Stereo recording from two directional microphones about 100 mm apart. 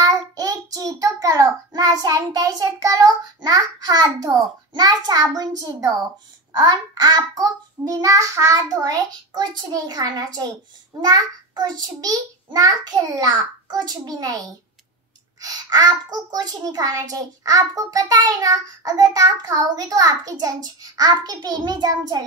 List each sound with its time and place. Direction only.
0.0 s child singing: 40° right (ahead or behind)
15.4 s child singing: 40° right (ahead or behind)